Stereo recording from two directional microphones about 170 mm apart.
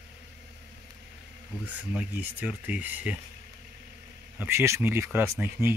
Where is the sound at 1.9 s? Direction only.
10° right (ahead or behind).